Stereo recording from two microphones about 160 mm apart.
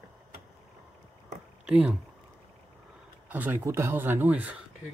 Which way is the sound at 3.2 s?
10° right (ahead or behind).